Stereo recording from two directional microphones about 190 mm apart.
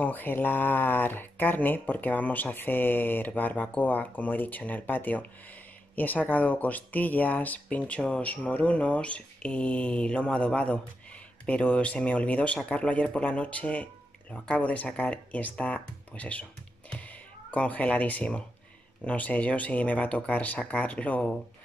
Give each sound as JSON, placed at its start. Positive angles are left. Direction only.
{"t": 0.0, "sound": "speech", "side_deg": 10}
{"t": 17.5, "sound": "speech", "side_deg": 5}